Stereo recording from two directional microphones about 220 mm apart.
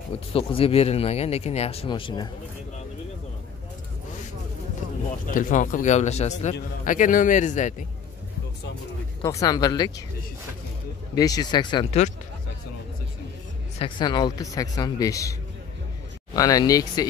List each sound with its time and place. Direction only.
0.3 s speech: 25° left (ahead or behind)
5.3 s a man's voice: 35° left (ahead or behind)
9.2 s a man's voice: 15° left (ahead or behind)
11.1 s speech: 15° left (ahead or behind)
13.7 s a man's voice: 20° left (ahead or behind)
16.3 s a man's voice: 15° left (ahead or behind)